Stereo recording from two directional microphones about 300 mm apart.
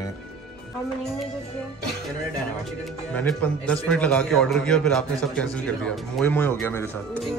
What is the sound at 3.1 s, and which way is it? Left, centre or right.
Speech, centre.